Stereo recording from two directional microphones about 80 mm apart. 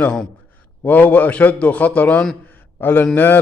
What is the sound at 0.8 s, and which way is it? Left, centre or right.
A man's voice, left.